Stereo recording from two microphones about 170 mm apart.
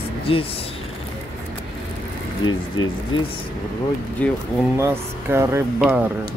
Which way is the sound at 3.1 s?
30° left (ahead or behind).